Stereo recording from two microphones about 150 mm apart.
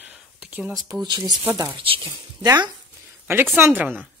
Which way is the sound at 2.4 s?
25° right (ahead or behind).